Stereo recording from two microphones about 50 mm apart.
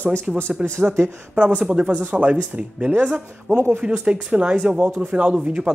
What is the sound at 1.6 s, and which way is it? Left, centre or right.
Speech, right.